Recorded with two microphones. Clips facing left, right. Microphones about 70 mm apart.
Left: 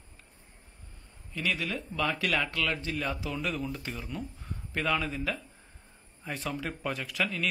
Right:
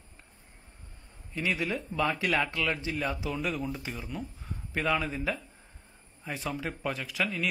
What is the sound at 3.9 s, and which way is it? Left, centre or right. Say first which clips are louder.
Speech: even; centre.